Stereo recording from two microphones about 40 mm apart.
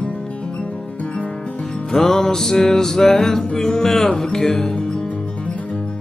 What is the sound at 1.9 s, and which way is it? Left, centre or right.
Music, centre.